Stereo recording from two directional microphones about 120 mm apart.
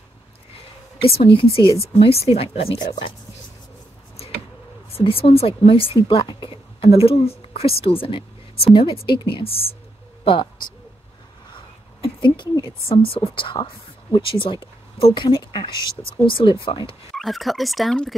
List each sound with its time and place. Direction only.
1.0 s a woman's voice: 50° left (ahead or behind)
2.8 s speech: 40° left (ahead or behind)
4.9 s a woman's voice: 50° left (ahead or behind)
12.0 s a woman's voice: 40° left (ahead or behind)
15.2 s a woman's voice: 35° left (ahead or behind)
17.1 s speech: centre (ahead or behind)